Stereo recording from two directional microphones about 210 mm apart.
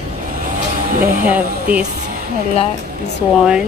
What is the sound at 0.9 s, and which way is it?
Speech, 40° right (ahead or behind).